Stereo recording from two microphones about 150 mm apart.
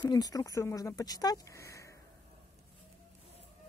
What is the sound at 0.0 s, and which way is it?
Speech, 25° left (ahead or behind).